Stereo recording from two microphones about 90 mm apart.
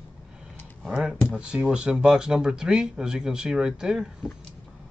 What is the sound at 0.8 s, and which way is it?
Speech, 10° right (ahead or behind).